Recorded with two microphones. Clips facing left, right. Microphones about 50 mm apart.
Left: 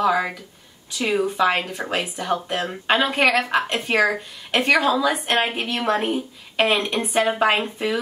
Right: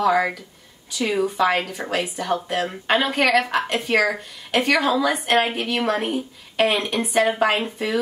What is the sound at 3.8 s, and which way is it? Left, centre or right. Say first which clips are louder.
Speech: right 2 dB; left.